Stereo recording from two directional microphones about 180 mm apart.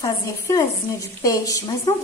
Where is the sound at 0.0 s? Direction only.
20° left (ahead or behind).